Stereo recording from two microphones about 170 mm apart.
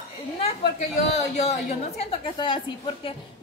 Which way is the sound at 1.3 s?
40° left (ahead or behind).